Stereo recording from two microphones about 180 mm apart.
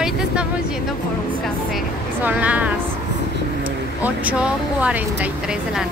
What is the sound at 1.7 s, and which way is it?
Speech, 10° right (ahead or behind).